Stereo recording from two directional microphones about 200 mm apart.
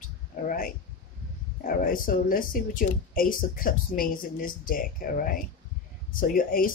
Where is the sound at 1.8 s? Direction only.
45° left (ahead or behind).